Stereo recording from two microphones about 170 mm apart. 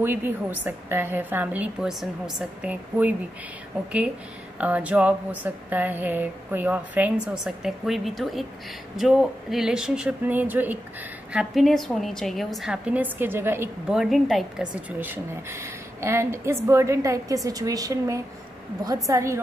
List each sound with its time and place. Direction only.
0.0 s speech: 10° right (ahead or behind)
4.6 s a woman's voice: 10° right (ahead or behind)
11.3 s a woman's voice: centre (ahead or behind)
13.9 s a woman's voice: centre (ahead or behind)
15.0 s speech: 15° right (ahead or behind)